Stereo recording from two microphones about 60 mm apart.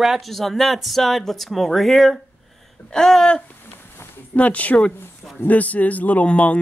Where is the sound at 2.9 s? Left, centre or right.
Centre.